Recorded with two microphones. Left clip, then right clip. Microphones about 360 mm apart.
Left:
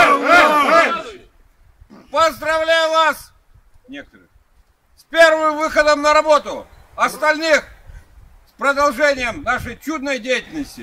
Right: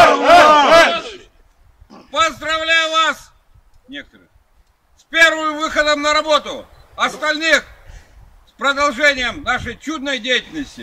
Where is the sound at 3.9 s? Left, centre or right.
Centre.